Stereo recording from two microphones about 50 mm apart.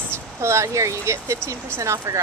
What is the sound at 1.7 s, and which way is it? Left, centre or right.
Speech, right.